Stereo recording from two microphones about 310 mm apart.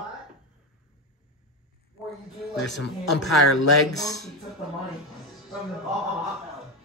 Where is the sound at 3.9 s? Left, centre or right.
Centre.